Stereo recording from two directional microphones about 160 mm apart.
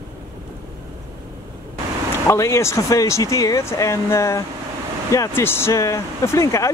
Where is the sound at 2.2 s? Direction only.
15° left (ahead or behind).